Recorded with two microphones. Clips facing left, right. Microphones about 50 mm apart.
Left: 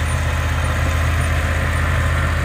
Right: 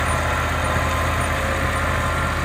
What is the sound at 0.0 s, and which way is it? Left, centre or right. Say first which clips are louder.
Vehicle: right 3 dB; centre.